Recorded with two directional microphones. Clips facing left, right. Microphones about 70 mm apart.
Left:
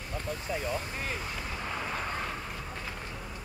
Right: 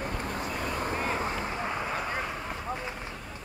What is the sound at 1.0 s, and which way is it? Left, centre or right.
Vehicle, right.